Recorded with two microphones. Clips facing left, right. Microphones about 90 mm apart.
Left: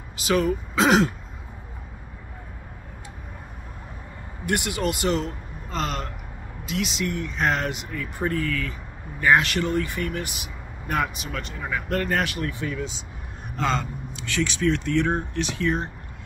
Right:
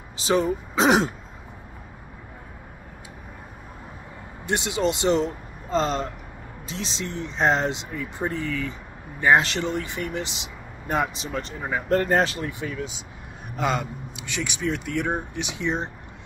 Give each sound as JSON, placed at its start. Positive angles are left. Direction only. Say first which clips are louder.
{"t": 0.2, "sound": "speech", "louder": "even", "side_deg": -30}
{"t": 4.5, "sound": "speech", "louder": "right 1 dB", "side_deg": -20}
{"t": 12.4, "sound": "speech", "louder": "left 1 dB", "side_deg": -20}